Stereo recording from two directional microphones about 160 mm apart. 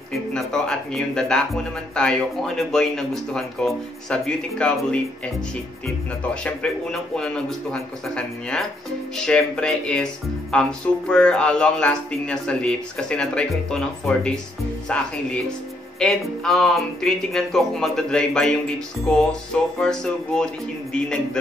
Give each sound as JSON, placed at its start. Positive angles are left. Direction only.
{"t": 0.1, "sound": "speech", "side_deg": 5}
{"t": 6.4, "sound": "speech", "side_deg": 5}
{"t": 10.5, "sound": "music", "side_deg": 5}
{"t": 11.1, "sound": "speech", "side_deg": 5}
{"t": 14.9, "sound": "music", "side_deg": 5}
{"t": 16.0, "sound": "speech", "side_deg": 0}